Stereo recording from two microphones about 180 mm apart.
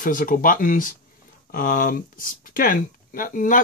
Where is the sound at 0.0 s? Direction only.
50° left (ahead or behind).